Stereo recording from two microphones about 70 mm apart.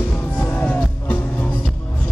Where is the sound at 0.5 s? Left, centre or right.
Left.